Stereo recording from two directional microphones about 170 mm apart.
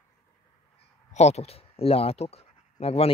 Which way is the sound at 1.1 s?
40° left (ahead or behind).